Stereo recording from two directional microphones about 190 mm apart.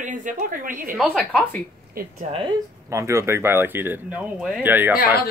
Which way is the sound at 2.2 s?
30° right (ahead or behind).